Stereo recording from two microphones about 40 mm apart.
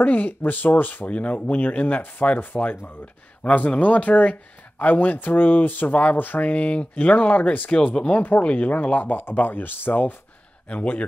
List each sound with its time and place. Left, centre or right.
0.0 s speech: left
1.1 s speech: left
3.4 s speech: left
6.5 s speech: left
10.7 s speech: left